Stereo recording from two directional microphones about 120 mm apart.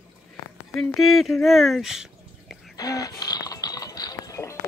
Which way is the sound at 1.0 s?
Centre (ahead or behind).